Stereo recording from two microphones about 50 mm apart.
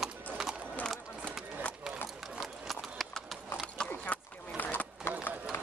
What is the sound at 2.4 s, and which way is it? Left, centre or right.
Clip-clop, centre.